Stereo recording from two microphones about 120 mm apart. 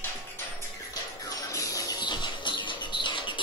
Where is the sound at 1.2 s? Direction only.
30° left (ahead or behind).